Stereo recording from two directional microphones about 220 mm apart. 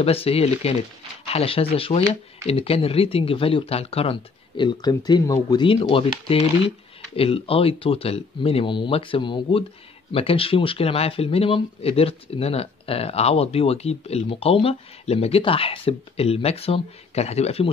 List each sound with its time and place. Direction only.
0.0 s speech: 25° left (ahead or behind)